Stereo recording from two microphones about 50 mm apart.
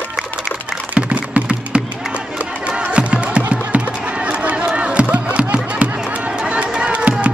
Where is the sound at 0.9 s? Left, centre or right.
Right.